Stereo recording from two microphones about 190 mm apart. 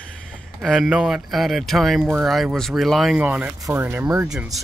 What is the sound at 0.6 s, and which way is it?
Speech, centre (ahead or behind).